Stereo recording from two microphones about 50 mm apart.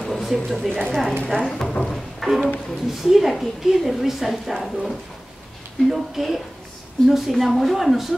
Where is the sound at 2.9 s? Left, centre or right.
Centre.